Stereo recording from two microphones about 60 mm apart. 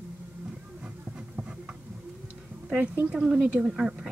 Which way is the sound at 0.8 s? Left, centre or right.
Right.